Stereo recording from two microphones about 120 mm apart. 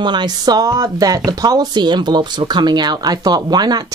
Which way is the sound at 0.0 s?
40° right (ahead or behind).